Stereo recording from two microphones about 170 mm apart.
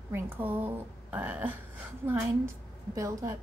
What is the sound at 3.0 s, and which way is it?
Speech, 20° right (ahead or behind).